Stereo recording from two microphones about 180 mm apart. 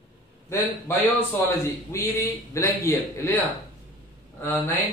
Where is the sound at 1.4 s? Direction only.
15° left (ahead or behind).